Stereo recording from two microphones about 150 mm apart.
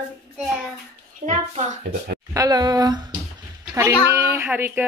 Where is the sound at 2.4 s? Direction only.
25° right (ahead or behind).